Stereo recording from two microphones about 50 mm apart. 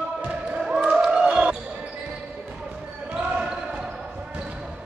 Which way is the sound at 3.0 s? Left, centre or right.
Right.